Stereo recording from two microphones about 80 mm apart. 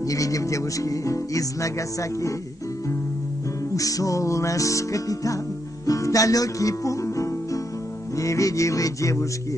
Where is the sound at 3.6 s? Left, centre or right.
Left.